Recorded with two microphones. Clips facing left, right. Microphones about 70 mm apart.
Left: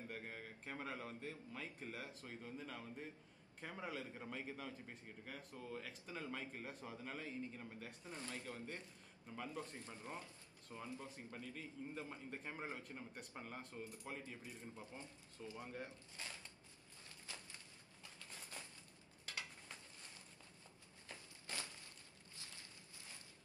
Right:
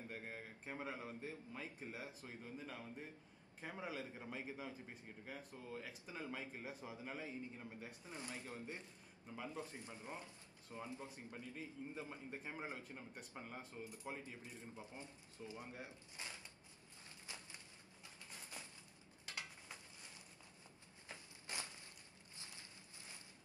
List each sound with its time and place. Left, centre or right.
0.1 s a man's voice: centre
2.4 s a man's voice: centre
12.7 s speech: centre
14.0 s a man's voice: centre
17.3 s a sound: right
21.1 s walk: right
22.4 s a sound: right